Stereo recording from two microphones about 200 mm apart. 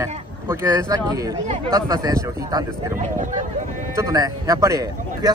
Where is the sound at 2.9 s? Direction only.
40° right (ahead or behind).